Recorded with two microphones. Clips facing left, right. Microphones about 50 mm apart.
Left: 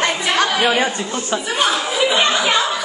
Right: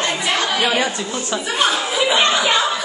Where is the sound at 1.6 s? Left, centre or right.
Centre.